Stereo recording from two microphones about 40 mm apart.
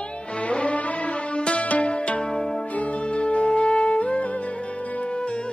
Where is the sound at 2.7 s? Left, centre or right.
Left.